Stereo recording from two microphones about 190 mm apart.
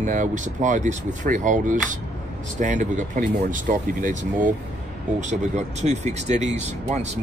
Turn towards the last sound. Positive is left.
turn(degrees=-35)  # may be behind; listen again after turning